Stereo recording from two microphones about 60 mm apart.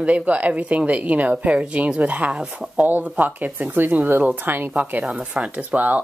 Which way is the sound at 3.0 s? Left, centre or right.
Right.